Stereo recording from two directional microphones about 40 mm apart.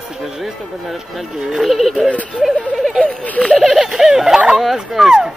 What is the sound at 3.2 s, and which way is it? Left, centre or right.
Speech, left.